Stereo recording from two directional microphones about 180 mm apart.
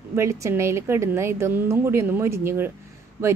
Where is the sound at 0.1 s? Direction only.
15° right (ahead or behind).